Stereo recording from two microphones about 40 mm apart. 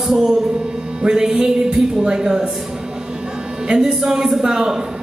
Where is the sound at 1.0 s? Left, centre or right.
Centre.